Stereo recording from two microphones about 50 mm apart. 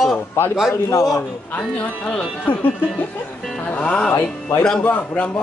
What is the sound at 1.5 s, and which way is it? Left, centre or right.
Speech, left.